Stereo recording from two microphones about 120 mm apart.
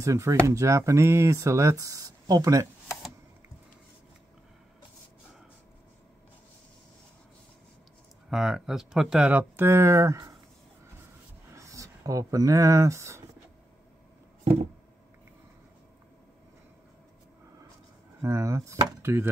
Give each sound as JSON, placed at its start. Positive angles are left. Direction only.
{"t": 0.0, "sound": "speech", "side_deg": -25}
{"t": 8.3, "sound": "speech", "side_deg": -5}
{"t": 11.5, "sound": "speech", "side_deg": -25}
{"t": 18.2, "sound": "speech", "side_deg": -25}